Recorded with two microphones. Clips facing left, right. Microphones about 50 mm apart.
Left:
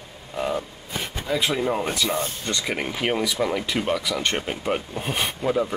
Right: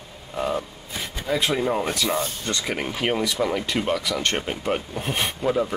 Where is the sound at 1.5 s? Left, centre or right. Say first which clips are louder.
Right 1 dB; centre.